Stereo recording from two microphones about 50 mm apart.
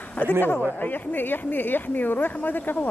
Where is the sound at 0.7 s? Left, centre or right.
Left.